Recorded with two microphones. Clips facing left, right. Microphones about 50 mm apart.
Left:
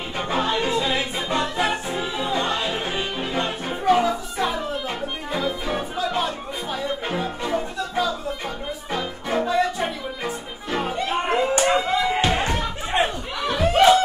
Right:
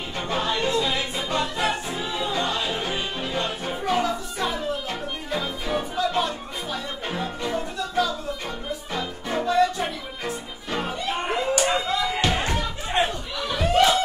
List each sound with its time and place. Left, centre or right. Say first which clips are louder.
0.2 s music: left 2 dB; centre
3.2 s music: left 2 dB; left
11.1 s a sound: left 3 dB; left
11.9 s music: left 3 dB; left
12.9 s a sound: left 2 dB; centre
13.6 s snicker: left 4 dB; centre